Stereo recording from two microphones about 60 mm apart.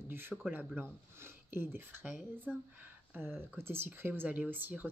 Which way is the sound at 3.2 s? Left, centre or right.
Right.